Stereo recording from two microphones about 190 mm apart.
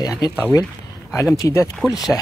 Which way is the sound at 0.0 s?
20° left (ahead or behind).